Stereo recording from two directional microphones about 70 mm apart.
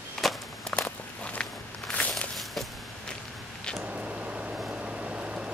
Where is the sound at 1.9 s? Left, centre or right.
Centre.